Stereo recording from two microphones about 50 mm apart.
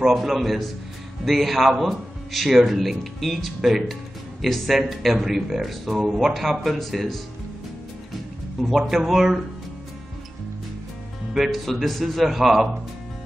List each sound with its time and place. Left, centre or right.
0.0 s a man's voice: centre
8.5 s a man's voice: centre
11.3 s a man's voice: centre